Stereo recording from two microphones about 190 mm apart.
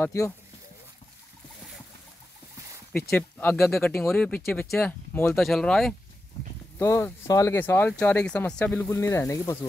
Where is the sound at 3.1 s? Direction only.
10° left (ahead or behind).